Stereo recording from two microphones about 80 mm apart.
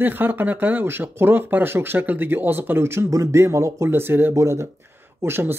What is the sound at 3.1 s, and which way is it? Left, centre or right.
Speech, right.